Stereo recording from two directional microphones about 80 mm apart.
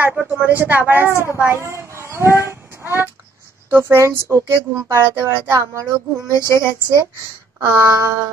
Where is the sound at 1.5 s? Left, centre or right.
Right.